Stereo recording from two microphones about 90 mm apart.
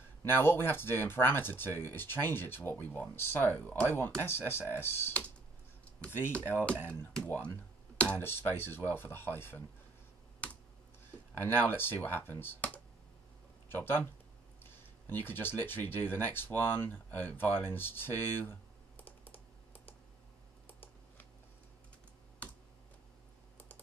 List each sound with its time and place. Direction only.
0.2 s speech: 25° left (ahead or behind)
10.4 s computer keyboard: 15° left (ahead or behind)
11.3 s speech: 20° left (ahead or behind)
13.8 s speech: 25° left (ahead or behind)
20.6 s computer keyboard: 20° left (ahead or behind)